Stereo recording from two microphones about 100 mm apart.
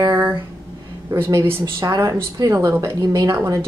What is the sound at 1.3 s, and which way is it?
A woman's voice, 35° right (ahead or behind).